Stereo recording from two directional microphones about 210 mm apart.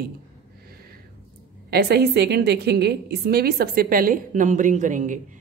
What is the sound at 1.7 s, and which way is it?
A woman's voice, 50° right (ahead or behind).